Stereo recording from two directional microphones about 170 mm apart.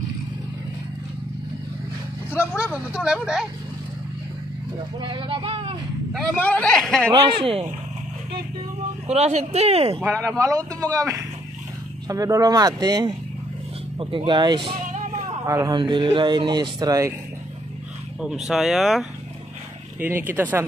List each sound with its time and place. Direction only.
2.5 s speech: 5° right (ahead or behind)
5.0 s speech: 30° right (ahead or behind)
6.3 s speech: 10° left (ahead or behind)
7.2 s speech: 35° right (ahead or behind)
9.0 s speech: 40° right (ahead or behind)
10.2 s speech: 20° right (ahead or behind)
15.4 s speech: 20° right (ahead or behind)
18.5 s speech: centre (ahead or behind)